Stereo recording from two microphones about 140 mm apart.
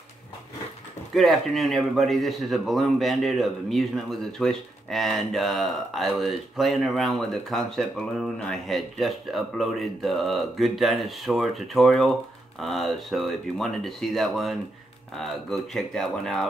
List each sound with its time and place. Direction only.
1.1 s speech: centre (ahead or behind)